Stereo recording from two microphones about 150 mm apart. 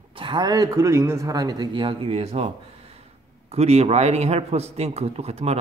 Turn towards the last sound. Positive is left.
turn(degrees=-45)  # may be behind; listen again after turning